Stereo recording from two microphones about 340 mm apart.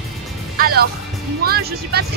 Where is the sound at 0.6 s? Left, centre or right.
Right.